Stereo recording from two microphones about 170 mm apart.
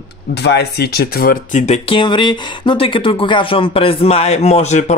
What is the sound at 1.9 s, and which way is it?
Speech, 30° left (ahead or behind).